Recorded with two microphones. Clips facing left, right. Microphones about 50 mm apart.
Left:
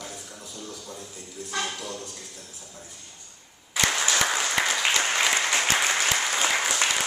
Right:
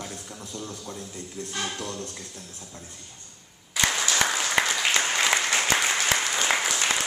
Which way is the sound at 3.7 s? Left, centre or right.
Centre.